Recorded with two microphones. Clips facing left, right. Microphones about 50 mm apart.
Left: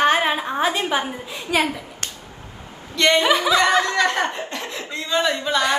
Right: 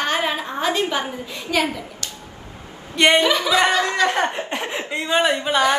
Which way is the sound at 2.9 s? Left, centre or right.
Right.